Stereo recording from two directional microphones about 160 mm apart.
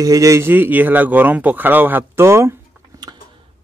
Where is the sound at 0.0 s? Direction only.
20° right (ahead or behind).